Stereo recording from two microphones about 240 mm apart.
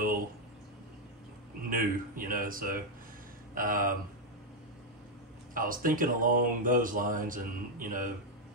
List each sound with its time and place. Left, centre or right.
1.7 s speech: right
5.5 s speech: right